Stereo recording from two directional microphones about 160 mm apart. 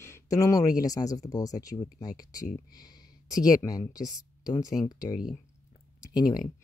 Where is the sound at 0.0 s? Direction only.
20° left (ahead or behind).